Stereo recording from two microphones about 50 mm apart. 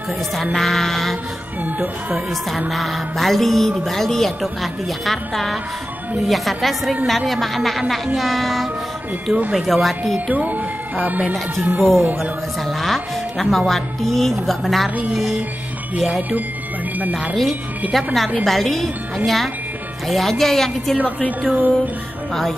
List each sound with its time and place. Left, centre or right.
0.5 s speech: centre
2.7 s speech: centre
10.3 s speech: right
12.6 s speech: centre
16.1 s speech: right
17.9 s speech: centre
21.4 s speech: right